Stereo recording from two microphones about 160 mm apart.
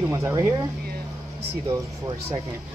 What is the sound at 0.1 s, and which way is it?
Speech, 20° right (ahead or behind).